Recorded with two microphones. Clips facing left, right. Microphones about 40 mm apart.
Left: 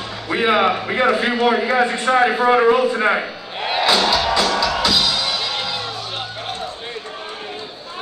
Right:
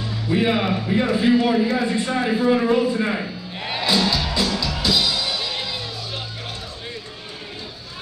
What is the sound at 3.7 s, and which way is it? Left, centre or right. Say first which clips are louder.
Music: left 4 dB; left.